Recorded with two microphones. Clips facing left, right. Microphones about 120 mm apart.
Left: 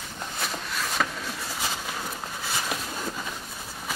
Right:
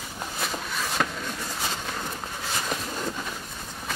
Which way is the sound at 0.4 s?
Centre (ahead or behind).